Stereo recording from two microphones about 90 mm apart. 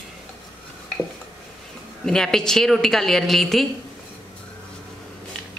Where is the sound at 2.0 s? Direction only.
5° left (ahead or behind).